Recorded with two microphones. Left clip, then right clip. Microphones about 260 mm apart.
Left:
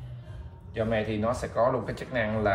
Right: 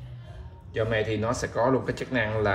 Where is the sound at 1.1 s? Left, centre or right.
Right.